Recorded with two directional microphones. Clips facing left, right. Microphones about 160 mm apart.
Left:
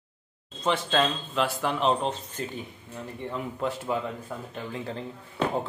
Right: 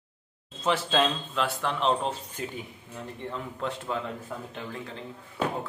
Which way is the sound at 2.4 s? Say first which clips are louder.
Left 1 dB; 10° right (ahead or behind).